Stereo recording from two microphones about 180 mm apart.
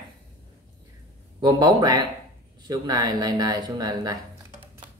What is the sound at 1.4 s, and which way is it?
Speech, 20° right (ahead or behind).